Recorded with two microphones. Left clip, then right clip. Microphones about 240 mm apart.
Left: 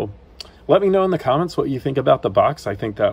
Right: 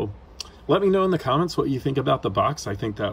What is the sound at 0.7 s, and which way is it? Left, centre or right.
Speech, centre.